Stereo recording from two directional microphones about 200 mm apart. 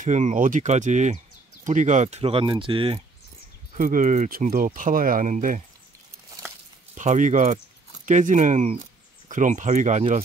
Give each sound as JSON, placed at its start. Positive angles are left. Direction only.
{"t": 0.0, "sound": "speech", "side_deg": -35}
{"t": 3.7, "sound": "speech", "side_deg": -40}
{"t": 7.0, "sound": "speech", "side_deg": -40}